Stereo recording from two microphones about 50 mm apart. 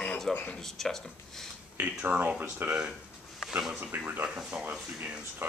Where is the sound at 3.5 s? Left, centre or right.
Centre.